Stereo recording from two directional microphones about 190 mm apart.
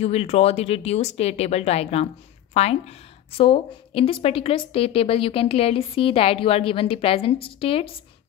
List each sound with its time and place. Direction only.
0.0 s a woman's voice: 35° left (ahead or behind)